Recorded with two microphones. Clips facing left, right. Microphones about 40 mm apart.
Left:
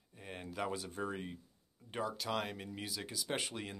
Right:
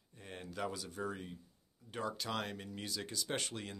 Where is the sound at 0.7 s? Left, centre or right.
Left.